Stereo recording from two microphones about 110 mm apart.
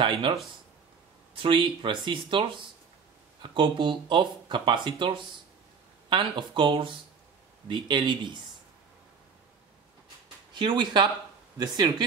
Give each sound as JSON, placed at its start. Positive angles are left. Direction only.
{"t": 0.0, "sound": "speech", "side_deg": -50}
{"t": 1.4, "sound": "speech", "side_deg": -50}
{"t": 10.5, "sound": "speech", "side_deg": -45}